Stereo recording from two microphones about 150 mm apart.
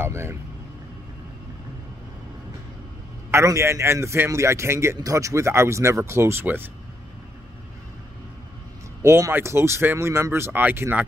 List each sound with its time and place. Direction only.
0.0 s speech: 15° right (ahead or behind)
3.3 s a man's voice: 20° right (ahead or behind)
9.0 s speech: 20° right (ahead or behind)